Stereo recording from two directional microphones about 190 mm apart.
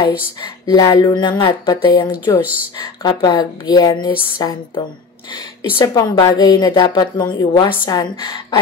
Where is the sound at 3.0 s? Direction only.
25° left (ahead or behind).